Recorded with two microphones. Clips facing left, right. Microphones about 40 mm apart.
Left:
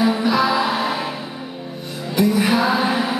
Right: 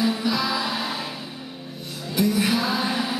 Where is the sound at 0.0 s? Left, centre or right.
Left.